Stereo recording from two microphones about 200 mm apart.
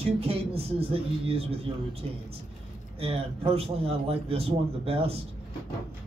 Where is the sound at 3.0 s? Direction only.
30° right (ahead or behind).